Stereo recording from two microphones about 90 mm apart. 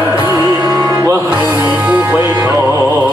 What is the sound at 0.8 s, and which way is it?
Mantra, 30° right (ahead or behind).